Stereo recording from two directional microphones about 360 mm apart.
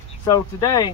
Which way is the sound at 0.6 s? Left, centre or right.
Centre.